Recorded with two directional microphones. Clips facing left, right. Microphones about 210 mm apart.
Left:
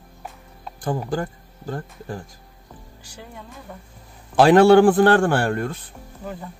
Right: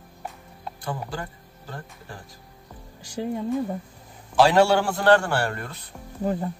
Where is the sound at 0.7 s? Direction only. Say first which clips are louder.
Left 8 dB; 45° left (ahead or behind).